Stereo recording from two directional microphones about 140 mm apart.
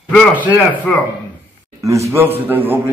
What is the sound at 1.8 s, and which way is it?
A woman's voice, 20° right (ahead or behind).